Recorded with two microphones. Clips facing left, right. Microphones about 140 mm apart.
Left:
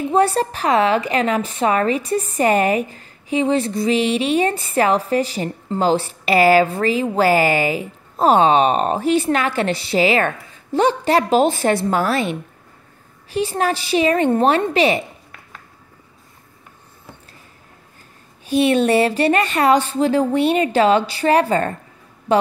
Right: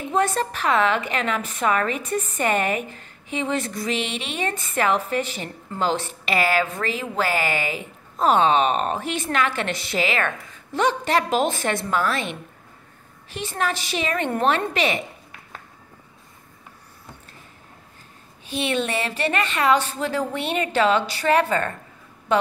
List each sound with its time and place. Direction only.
0.1 s a woman's voice: 35° left (ahead or behind)
13.3 s a woman's voice: 35° left (ahead or behind)
18.5 s a woman's voice: 40° left (ahead or behind)